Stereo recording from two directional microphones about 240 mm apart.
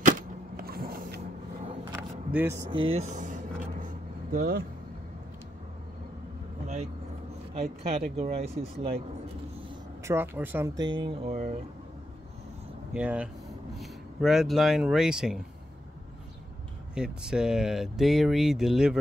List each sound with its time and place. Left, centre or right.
0.0 s power windows: right
1.9 s vehicle: centre
2.7 s speech: right
3.8 s vehicle: right
7.5 s speech: right
10.0 s speech: centre
10.8 s speech: centre
12.9 s speech: centre
16.9 s speech: centre